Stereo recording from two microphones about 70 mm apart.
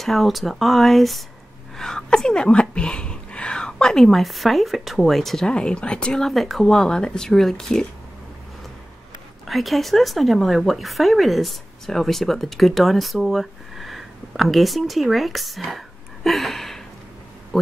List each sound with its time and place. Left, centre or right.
0.0 s a woman's voice: centre
9.5 s speech: centre
16.3 s a sound: centre